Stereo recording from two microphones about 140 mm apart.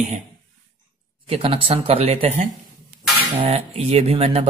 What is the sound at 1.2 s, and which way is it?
Speech, 40° right (ahead or behind).